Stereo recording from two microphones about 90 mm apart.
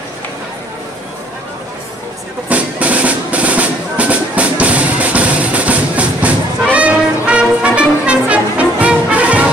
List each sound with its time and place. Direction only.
2.5 s music: 15° right (ahead or behind)